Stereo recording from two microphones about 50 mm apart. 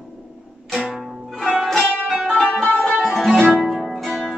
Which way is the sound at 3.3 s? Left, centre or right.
Right.